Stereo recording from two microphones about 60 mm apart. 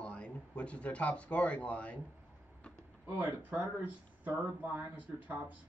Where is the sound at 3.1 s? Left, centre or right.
Right.